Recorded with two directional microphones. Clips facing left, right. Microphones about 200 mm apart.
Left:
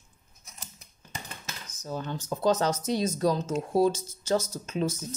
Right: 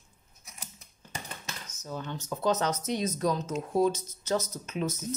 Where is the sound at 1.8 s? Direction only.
35° left (ahead or behind).